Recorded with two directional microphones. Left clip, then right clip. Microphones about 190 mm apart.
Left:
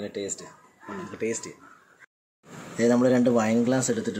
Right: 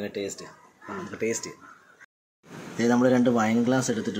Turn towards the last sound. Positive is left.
turn(degrees=0)  # may be behind; listen again after turning